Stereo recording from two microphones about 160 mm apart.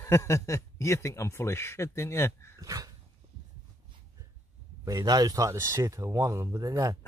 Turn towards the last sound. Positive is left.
turn(degrees=-20)  # may be behind; listen again after turning